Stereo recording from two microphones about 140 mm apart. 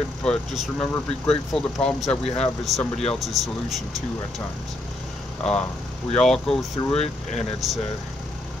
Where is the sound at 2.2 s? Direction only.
50° left (ahead or behind).